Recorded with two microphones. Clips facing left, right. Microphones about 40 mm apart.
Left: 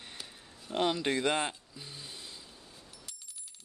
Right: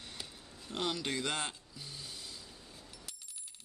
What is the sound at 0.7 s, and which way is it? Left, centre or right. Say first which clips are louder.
Speech: left 6 dB; left.